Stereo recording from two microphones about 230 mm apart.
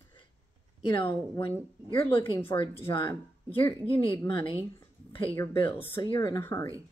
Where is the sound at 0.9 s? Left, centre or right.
Left.